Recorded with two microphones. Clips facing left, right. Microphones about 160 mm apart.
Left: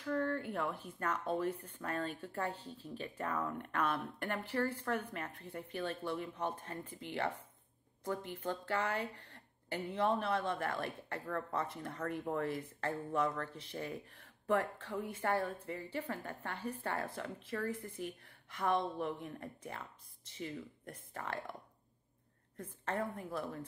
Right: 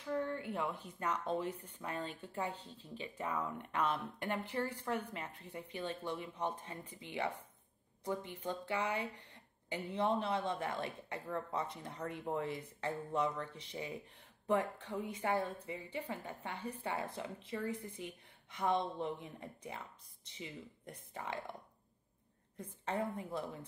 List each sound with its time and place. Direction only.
0.0 s a sound: 15° right (ahead or behind)
0.5 s a woman's voice: 10° right (ahead or behind)
2.5 s speech: 10° left (ahead or behind)
3.0 s a woman's voice: 10° right (ahead or behind)
8.3 s a woman's voice: 10° right (ahead or behind)
17.1 s a woman's voice: 25° right (ahead or behind)
22.6 s a woman's voice: 20° right (ahead or behind)